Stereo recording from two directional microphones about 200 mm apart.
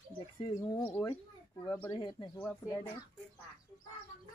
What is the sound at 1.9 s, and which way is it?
Speech, 20° left (ahead or behind).